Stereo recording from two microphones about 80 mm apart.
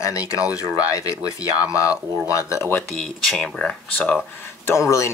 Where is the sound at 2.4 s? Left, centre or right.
Left.